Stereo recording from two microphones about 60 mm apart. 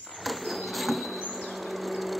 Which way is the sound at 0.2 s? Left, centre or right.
Centre.